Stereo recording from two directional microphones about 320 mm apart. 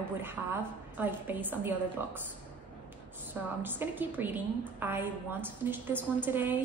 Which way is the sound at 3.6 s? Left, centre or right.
Centre.